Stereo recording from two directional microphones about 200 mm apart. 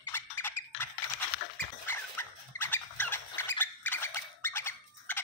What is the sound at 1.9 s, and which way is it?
Rodents, 10° left (ahead or behind).